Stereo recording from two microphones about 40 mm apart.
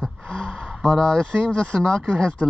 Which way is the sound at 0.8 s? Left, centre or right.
Centre.